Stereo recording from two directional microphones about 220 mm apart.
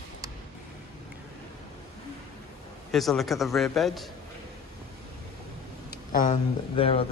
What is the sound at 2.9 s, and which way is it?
A man's voice, centre (ahead or behind).